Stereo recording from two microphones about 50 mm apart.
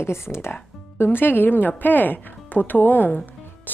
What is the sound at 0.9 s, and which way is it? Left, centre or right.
Speech, left.